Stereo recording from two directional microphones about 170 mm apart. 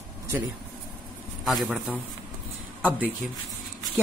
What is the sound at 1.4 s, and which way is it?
Speech, centre (ahead or behind).